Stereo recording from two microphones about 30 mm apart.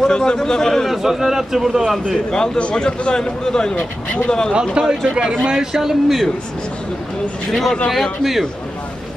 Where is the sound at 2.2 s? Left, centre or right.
Left.